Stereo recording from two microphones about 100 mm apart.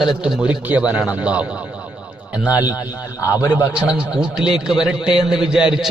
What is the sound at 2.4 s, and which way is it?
A man's voice, 15° right (ahead or behind).